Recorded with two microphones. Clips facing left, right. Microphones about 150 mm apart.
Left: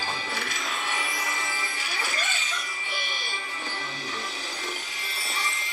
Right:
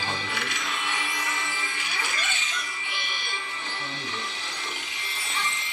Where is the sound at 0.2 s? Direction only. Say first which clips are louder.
Even; 40° left (ahead or behind).